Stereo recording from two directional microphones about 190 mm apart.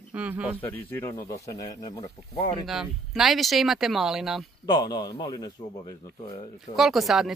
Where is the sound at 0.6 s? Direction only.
10° left (ahead or behind).